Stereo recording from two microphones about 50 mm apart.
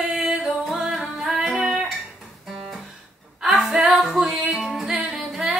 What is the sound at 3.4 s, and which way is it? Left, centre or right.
Music, centre.